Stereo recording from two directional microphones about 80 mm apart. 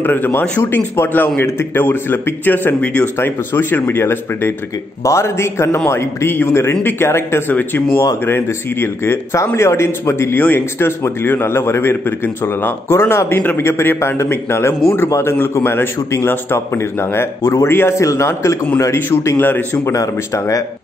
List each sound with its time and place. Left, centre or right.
0.0 s a man's voice: left
3.2 s a man's voice: left
19.8 s a man's voice: left